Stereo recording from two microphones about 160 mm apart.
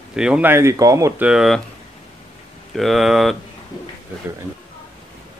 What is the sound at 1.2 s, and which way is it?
Speech, 5° right (ahead or behind).